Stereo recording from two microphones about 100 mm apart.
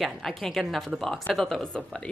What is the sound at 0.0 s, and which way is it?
A woman's voice, centre (ahead or behind).